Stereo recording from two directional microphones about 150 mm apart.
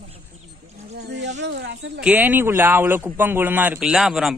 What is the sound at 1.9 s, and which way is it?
A man's voice, 10° right (ahead or behind).